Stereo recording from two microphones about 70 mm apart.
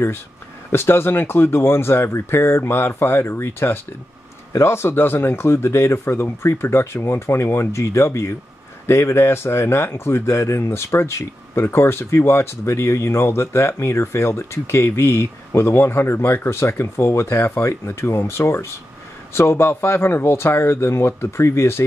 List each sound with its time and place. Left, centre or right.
0.7 s speech: left